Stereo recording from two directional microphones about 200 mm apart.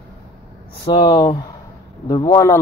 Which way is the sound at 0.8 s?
20° left (ahead or behind).